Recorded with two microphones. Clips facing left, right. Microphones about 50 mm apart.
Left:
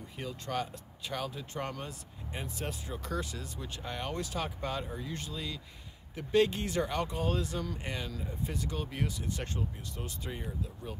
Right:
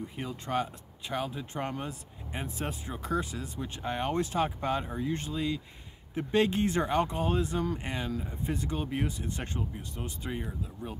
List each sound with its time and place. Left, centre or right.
0.1 s speech: right